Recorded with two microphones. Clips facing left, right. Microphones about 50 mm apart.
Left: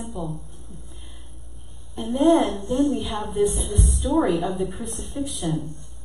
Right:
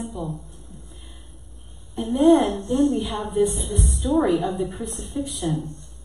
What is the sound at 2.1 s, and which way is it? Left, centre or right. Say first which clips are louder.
A woman's voice: right 2 dB; centre.